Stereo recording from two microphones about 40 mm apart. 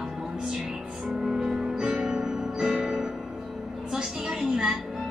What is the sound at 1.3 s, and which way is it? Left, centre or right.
Music, centre.